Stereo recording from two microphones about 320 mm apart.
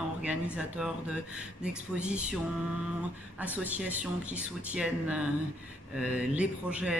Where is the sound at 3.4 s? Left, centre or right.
Centre.